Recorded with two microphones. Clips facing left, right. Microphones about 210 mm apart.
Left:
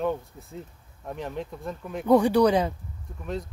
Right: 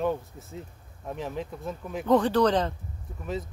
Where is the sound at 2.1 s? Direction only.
10° left (ahead or behind).